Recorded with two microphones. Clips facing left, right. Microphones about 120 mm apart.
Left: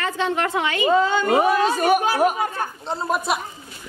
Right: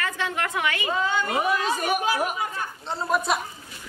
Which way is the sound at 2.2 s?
50° left (ahead or behind).